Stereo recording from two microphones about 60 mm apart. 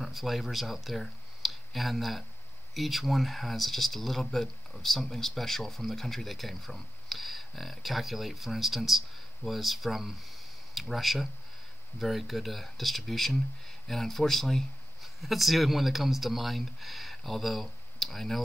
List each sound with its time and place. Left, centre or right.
0.0 s speech: centre